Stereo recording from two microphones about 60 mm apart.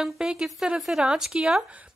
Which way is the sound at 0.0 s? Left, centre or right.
Centre.